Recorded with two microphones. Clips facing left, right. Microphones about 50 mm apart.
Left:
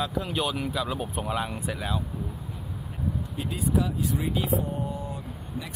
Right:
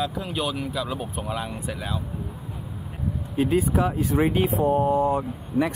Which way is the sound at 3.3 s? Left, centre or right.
Right.